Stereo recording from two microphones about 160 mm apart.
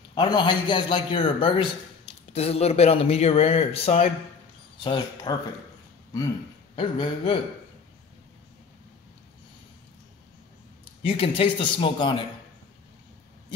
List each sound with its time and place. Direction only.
0.1 s a man's voice: 30° left (ahead or behind)
4.8 s a man's voice: 30° left (ahead or behind)
6.7 s speech: 35° left (ahead or behind)
11.1 s speech: 35° left (ahead or behind)